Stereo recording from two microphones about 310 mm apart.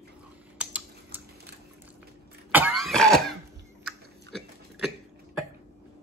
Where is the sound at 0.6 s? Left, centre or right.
Centre.